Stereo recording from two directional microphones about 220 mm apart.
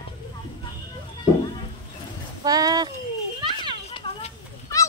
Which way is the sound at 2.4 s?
15° right (ahead or behind).